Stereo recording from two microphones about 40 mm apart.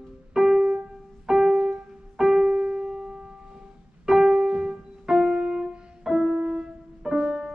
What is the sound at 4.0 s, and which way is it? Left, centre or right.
Piano, centre.